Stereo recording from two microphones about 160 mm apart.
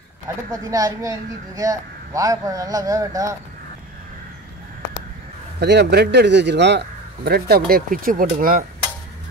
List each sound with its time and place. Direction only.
0.5 s speech: 20° right (ahead or behind)
5.6 s speech: 90° right
7.2 s speech: 80° right